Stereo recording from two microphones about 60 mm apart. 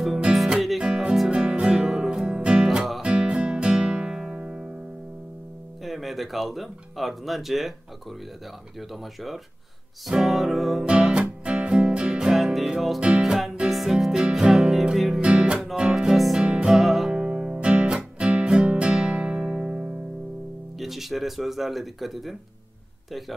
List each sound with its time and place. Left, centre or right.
0.3 s music: centre
5.9 s speech: centre
10.0 s speech: centre
10.9 s music: centre
17.2 s music: centre
20.8 s speech: centre